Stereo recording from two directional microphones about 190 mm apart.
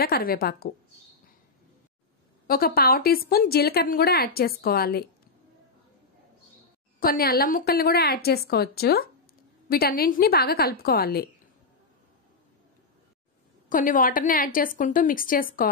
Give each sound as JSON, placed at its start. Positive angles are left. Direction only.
{"t": 0.0, "sound": "speech", "side_deg": 50}
{"t": 2.4, "sound": "speech", "side_deg": 50}
{"t": 7.0, "sound": "speech", "side_deg": 50}
{"t": 13.7, "sound": "speech", "side_deg": 45}